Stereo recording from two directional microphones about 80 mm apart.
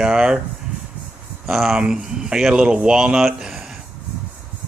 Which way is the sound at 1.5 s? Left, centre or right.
Centre.